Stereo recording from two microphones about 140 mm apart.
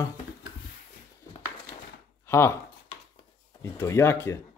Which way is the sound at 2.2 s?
20° left (ahead or behind).